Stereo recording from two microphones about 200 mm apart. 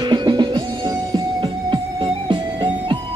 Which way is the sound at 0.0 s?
20° right (ahead or behind).